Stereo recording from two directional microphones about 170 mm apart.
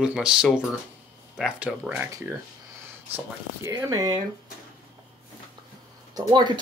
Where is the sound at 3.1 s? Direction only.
15° right (ahead or behind).